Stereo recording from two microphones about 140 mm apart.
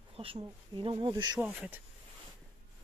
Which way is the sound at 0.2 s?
40° right (ahead or behind).